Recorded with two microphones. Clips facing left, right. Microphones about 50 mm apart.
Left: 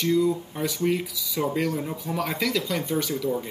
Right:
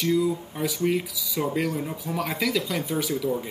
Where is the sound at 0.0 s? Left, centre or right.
Centre.